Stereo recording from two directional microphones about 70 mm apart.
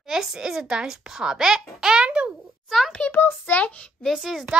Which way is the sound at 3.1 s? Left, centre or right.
Left.